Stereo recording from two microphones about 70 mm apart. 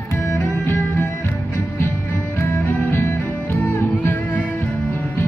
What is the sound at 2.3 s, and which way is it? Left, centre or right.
Music, left.